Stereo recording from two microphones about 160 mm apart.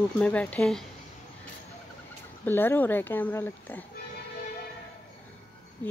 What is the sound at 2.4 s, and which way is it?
A woman's voice, 15° left (ahead or behind).